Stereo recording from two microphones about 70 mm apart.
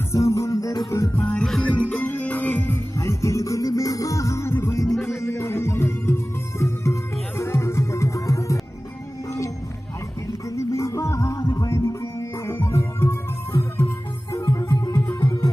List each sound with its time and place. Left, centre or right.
0.1 s music: left
1.1 s music: left
1.4 s music: centre
3.0 s music: left
10.5 s music: left
14.3 s music: left